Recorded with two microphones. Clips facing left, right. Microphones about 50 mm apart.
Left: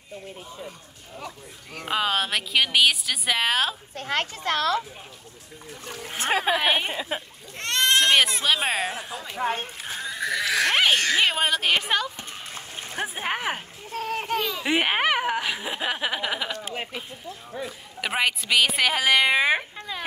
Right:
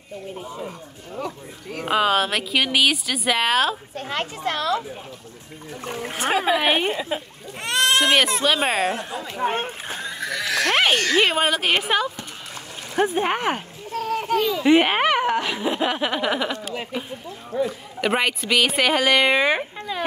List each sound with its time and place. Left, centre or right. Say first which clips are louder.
1.2 s speech: right 7 dB; centre
4.1 s a woman's voice: even; left
5.9 s speech: right 4 dB; right
6.6 s a woman's voice: right 3 dB; centre
9.5 s speech: right 3 dB; right
9.8 s goat: even; centre
10.4 s sheep: right 2 dB; centre
11.1 s speech: right 3 dB; centre
13.9 s a sound: right 4 dB; left
14.4 s speech: right 10 dB; centre
17.6 s speech: right 8 dB; centre
19.9 s a sound: right 6 dB; centre